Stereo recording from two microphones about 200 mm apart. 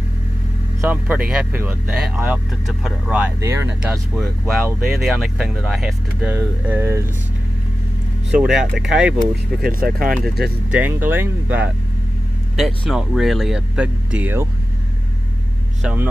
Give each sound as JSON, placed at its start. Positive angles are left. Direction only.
{"t": 0.7, "sound": "speech", "side_deg": -10}
{"t": 8.3, "sound": "speech", "side_deg": -5}
{"t": 9.6, "sound": "speech", "side_deg": -45}
{"t": 10.7, "sound": "speech", "side_deg": -10}
{"t": 15.8, "sound": "speech", "side_deg": -5}